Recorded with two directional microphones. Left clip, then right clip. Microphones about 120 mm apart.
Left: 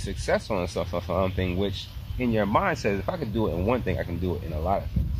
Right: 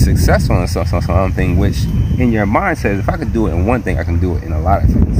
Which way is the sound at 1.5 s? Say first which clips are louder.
Right 10 dB; 10° left (ahead or behind).